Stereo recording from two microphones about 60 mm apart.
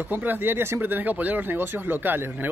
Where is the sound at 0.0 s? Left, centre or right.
Right.